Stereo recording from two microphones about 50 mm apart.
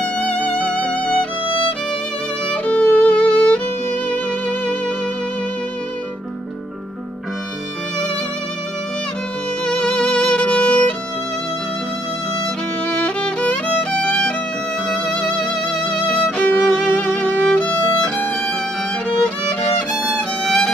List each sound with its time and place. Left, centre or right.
0.0 s music: left
2.4 s music: left
9.7 s music: centre
12.8 s music: left
13.2 s violin: left
14.9 s music: centre
16.6 s music: centre
17.6 s violin: left
20.2 s violin: centre